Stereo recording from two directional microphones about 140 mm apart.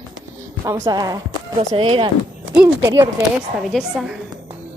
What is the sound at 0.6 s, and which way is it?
Speech, 20° right (ahead or behind).